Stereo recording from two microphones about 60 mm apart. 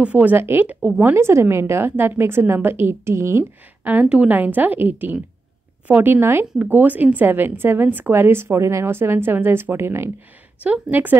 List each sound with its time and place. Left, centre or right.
0.0 s a woman's voice: right
0.4 s a woman's voice: right
3.8 s a woman's voice: right
10.6 s a woman's voice: right